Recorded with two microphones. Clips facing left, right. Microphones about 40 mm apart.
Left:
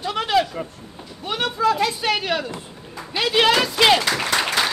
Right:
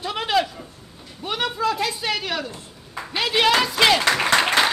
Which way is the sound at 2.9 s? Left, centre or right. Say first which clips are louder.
Right 2 dB; right.